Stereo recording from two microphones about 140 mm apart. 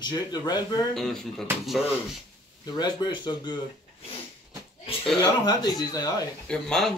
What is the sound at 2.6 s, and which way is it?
Speech, 30° left (ahead or behind).